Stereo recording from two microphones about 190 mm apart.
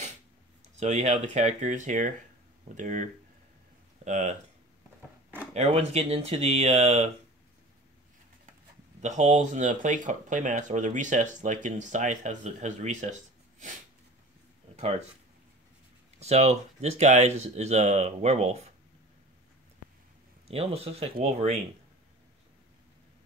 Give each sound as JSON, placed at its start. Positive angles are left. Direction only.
{"t": 0.7, "sound": "speech", "side_deg": -35}
{"t": 5.5, "sound": "speech", "side_deg": -35}
{"t": 9.0, "sound": "speech", "side_deg": -40}
{"t": 14.8, "sound": "speech", "side_deg": -35}
{"t": 16.2, "sound": "speech", "side_deg": -35}
{"t": 20.4, "sound": "speech", "side_deg": -30}